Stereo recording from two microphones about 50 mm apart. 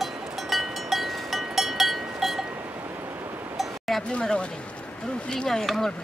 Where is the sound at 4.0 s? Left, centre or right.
Centre.